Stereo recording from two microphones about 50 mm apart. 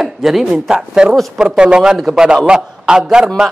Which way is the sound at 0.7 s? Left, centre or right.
Centre.